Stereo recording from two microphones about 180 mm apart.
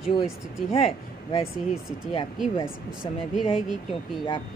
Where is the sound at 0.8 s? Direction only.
35° left (ahead or behind).